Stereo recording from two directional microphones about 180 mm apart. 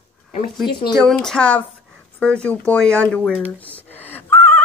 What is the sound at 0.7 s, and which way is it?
Speech, 25° left (ahead or behind).